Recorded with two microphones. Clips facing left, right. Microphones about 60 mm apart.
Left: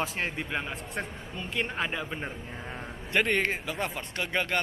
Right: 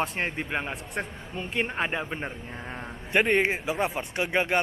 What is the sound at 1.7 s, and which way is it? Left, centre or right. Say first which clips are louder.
A man's voice: right 3 dB; right.